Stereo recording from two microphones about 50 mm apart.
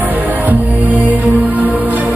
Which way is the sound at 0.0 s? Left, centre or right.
Right.